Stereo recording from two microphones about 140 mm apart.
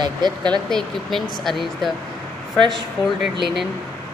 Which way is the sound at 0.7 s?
5° left (ahead or behind).